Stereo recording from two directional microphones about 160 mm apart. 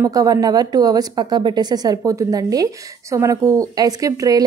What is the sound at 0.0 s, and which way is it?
A woman's voice, 20° right (ahead or behind).